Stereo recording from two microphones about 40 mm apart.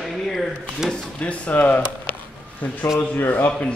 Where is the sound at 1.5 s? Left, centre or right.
Left.